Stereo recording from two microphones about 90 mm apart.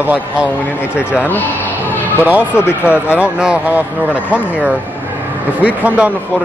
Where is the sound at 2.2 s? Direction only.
15° right (ahead or behind).